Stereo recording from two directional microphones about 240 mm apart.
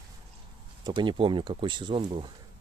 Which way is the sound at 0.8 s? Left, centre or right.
Centre.